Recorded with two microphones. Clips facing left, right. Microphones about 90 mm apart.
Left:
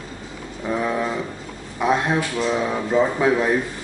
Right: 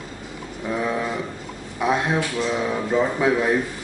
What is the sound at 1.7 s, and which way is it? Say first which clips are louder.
Speech: left 1 dB; centre (ahead or behind).